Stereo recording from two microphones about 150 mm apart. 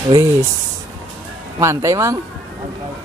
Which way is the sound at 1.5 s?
20° right (ahead or behind).